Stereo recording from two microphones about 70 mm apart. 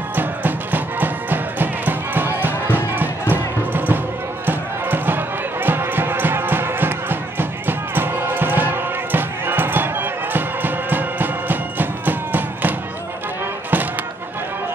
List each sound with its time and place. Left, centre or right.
0.1 s music: right